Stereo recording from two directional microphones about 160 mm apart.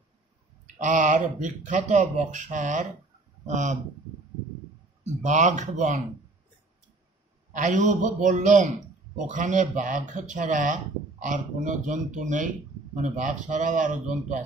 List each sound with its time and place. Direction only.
0.7 s speech: 50° right (ahead or behind)
5.0 s speech: 50° right (ahead or behind)
7.5 s speech: 50° right (ahead or behind)